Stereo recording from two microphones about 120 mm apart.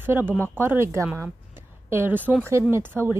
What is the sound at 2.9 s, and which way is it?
Speech, 15° right (ahead or behind).